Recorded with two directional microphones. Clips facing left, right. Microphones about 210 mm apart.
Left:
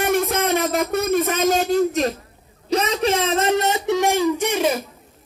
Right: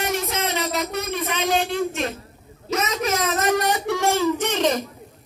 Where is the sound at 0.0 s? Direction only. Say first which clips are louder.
Left 5 dB; 55° left (ahead or behind); by 4.8 s 10° left (ahead or behind).